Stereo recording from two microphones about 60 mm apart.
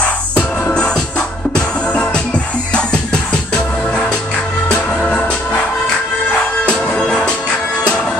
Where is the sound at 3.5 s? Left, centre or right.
Centre.